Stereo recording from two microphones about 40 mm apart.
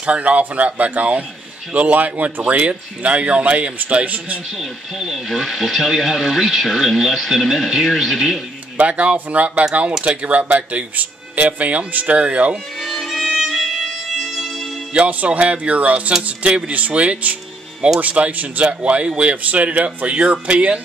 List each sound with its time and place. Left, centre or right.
0.0 s speech: right
4.6 s speech: centre
8.7 s speech: right
13.0 s violin: centre
13.5 s music: centre
15.0 s speech: right